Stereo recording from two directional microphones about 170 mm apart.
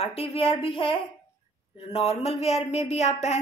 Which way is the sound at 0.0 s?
35° left (ahead or behind).